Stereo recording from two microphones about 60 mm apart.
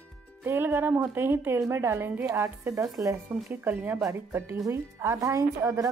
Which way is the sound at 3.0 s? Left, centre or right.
Right.